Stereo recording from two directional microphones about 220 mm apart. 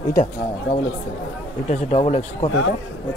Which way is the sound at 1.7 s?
30° left (ahead or behind).